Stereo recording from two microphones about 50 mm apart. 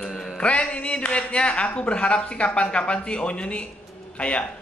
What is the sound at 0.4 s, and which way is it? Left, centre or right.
Speech, left.